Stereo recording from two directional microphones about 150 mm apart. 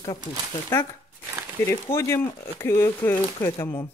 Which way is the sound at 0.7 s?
15° left (ahead or behind).